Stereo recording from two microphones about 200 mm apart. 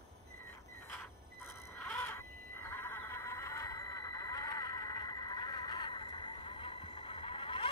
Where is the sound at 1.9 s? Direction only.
10° left (ahead or behind).